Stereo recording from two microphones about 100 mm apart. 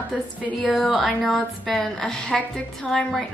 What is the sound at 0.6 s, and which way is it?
A woman's voice, centre (ahead or behind).